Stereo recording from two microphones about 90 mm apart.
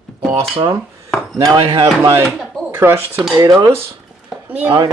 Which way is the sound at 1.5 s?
70° right (ahead or behind).